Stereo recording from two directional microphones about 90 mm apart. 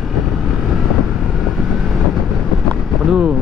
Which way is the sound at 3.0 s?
5° right (ahead or behind).